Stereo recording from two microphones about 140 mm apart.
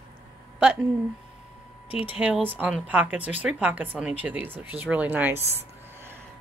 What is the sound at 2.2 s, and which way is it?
Speech, 10° right (ahead or behind).